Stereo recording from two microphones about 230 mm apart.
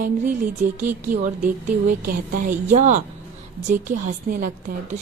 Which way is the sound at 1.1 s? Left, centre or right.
Right.